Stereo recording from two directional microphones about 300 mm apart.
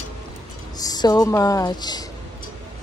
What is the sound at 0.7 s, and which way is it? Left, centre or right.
Speech, centre.